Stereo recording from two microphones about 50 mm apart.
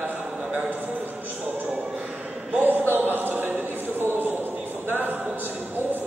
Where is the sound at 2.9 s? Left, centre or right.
Right.